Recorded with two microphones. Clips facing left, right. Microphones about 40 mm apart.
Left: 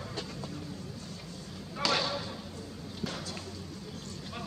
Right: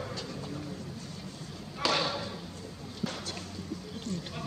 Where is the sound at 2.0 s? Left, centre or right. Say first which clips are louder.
Right 1 dB; centre.